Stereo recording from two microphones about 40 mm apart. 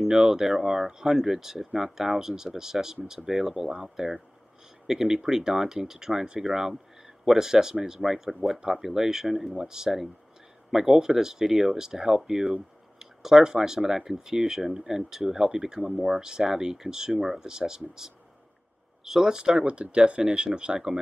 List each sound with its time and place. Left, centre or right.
0.2 s speech: centre
19.6 s speech: right